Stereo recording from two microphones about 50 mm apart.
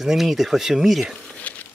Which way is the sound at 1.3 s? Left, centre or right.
Left.